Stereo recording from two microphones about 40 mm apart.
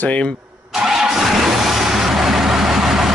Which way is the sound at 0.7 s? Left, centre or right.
Centre.